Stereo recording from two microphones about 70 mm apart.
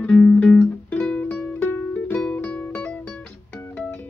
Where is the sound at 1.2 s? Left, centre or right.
Left.